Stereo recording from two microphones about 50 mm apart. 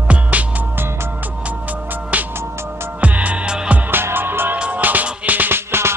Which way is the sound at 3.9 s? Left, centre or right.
Right.